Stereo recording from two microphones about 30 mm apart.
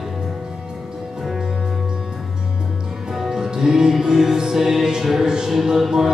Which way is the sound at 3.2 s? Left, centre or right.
Centre.